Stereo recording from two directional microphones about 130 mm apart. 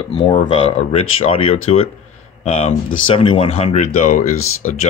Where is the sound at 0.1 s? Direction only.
40° left (ahead or behind).